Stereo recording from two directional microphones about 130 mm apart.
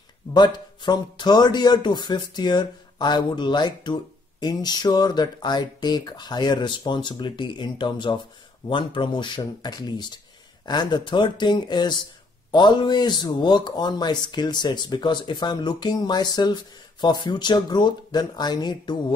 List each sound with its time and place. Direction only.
0.3 s speech: 35° left (ahead or behind)